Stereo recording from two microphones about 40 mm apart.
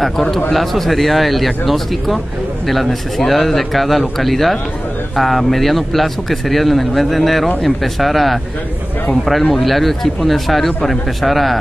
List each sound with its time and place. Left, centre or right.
0.0 s a man's voice: centre